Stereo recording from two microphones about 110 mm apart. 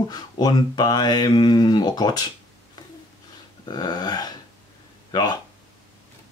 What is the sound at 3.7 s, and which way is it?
Speech, 40° left (ahead or behind).